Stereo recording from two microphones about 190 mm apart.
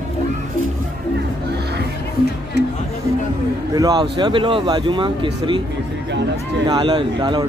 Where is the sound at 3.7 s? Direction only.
20° right (ahead or behind).